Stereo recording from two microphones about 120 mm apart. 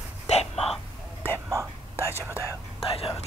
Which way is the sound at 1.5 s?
25° right (ahead or behind).